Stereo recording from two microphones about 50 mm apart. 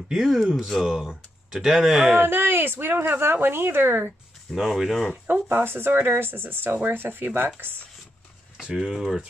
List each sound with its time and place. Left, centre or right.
0.1 s speech: centre
2.1 s speech: right
4.5 s speech: centre
5.3 s speech: right
8.7 s speech: centre